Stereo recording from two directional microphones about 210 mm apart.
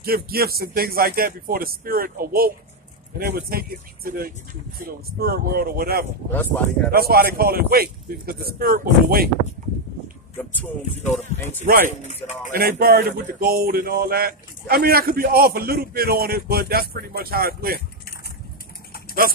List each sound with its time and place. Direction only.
0.0 s speech: 45° right (ahead or behind)
10.5 s music: 10° left (ahead or behind)
11.6 s speech: 45° right (ahead or behind)
11.9 s speech: 35° left (ahead or behind)
12.5 s speech: 45° right (ahead or behind)